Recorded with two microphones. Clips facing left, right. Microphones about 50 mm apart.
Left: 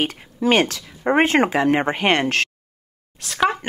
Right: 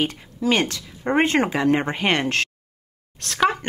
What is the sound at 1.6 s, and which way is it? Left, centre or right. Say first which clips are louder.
Speech: left 2 dB; centre.